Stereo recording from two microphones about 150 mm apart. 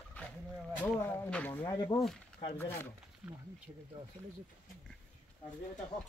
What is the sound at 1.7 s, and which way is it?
Speech, 25° left (ahead or behind).